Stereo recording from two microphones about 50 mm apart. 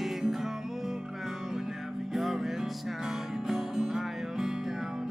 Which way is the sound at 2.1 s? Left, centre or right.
Centre.